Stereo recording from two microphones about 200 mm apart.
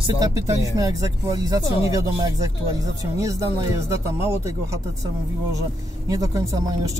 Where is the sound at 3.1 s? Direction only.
15° right (ahead or behind).